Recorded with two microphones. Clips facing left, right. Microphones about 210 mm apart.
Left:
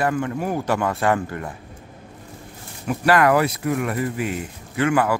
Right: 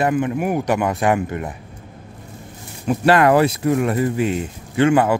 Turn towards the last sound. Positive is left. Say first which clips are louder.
# right 4 dB
turn(degrees=-25)  # may be behind; listen again after turning